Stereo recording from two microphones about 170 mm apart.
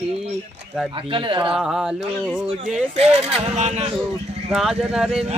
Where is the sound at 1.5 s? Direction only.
5° right (ahead or behind).